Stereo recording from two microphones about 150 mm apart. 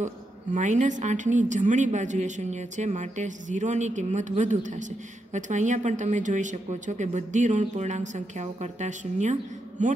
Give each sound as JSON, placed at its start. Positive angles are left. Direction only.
{"t": 0.6, "sound": "a woman's voice", "side_deg": -55}